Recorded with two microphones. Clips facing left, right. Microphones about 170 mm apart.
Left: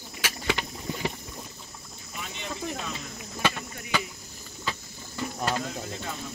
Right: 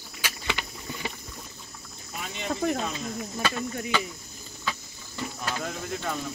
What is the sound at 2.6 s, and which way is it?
Cricket, 65° right (ahead or behind).